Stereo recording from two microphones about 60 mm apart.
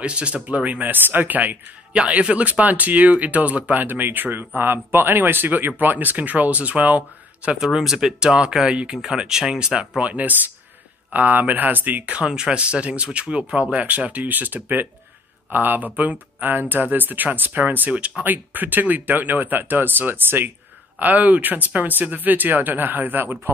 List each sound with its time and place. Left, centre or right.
0.0 s speech: centre
2.0 s speech: centre
7.5 s speech: centre; by 12.2 s right
12.2 s speech: centre; by 23.5 s right